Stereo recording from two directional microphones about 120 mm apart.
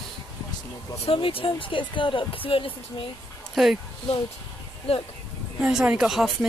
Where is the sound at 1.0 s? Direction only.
50° left (ahead or behind).